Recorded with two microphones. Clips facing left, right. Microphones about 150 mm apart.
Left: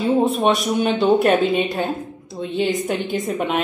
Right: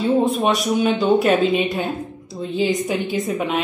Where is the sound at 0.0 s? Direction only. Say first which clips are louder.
Even; 5° left (ahead or behind).